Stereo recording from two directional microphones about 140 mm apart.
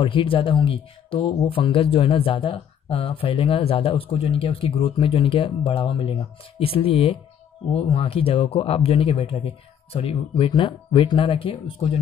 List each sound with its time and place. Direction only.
0.0 s speech: 40° left (ahead or behind)